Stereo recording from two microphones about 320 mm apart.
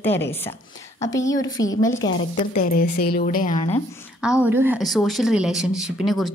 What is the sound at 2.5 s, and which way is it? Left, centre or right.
A woman's voice, left.